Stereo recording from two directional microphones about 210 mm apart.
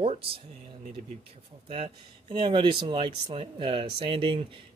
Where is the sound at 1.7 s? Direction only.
25° right (ahead or behind).